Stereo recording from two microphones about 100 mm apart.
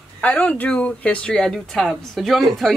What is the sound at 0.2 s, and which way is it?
Speech, 15° left (ahead or behind).